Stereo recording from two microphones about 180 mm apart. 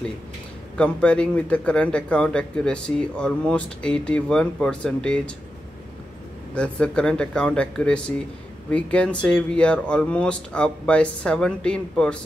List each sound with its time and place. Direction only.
0.7 s speech: 5° left (ahead or behind)
6.5 s speech: 5° left (ahead or behind)